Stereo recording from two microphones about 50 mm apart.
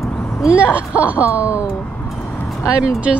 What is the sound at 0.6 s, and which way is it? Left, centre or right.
Speech, right.